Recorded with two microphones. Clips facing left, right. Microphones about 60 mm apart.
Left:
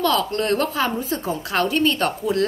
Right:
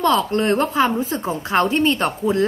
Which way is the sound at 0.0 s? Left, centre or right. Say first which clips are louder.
Right 3 dB; right.